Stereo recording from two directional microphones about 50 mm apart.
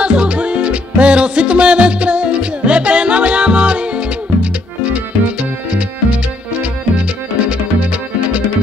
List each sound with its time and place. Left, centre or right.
0.0 s music: right